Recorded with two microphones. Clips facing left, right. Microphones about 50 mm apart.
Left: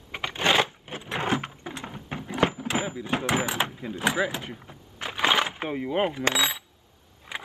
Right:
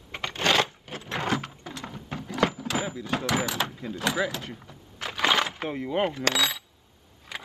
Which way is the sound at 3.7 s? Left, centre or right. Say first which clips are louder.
Left 2 dB; centre.